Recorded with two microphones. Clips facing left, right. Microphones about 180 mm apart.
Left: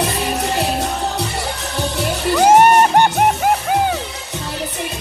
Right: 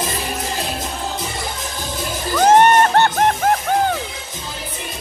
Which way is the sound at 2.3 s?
10° left (ahead or behind).